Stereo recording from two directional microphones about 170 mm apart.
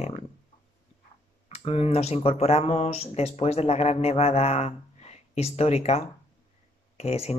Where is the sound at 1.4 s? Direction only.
35° left (ahead or behind).